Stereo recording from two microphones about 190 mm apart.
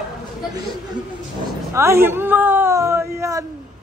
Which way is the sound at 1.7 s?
15° right (ahead or behind).